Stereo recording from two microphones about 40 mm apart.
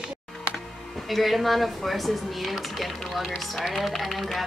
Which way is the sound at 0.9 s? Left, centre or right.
Centre.